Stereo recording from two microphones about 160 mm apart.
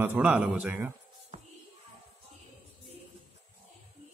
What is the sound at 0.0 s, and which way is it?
Speech, 10° right (ahead or behind).